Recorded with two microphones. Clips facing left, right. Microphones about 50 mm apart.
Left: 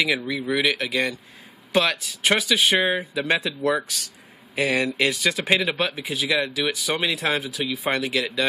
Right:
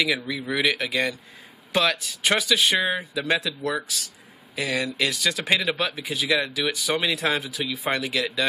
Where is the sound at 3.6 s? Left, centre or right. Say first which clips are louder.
Left 4 dB; left.